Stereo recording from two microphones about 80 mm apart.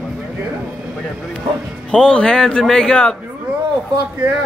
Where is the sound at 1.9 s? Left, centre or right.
Centre.